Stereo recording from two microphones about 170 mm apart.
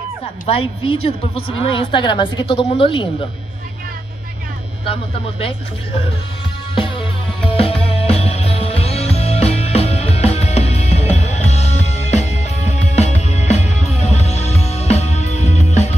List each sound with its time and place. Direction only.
0.5 s a woman's voice: 35° left (ahead or behind)
6.7 s music: 30° left (ahead or behind)